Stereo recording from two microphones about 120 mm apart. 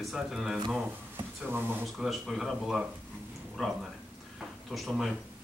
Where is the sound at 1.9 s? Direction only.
Centre (ahead or behind).